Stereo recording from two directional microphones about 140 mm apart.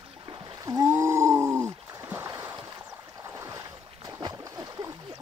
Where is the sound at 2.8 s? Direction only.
20° right (ahead or behind).